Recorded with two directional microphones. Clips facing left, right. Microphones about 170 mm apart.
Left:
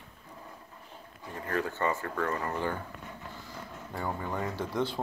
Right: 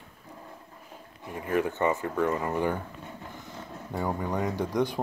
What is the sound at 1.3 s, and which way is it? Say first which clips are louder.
Speech: right 5 dB; 15° right (ahead or behind).